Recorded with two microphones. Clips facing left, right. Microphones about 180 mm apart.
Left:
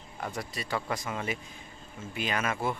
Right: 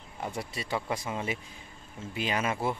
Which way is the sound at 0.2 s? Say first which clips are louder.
Right 1 dB; 25° right (ahead or behind).